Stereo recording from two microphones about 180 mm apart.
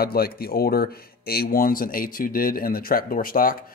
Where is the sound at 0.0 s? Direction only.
55° left (ahead or behind).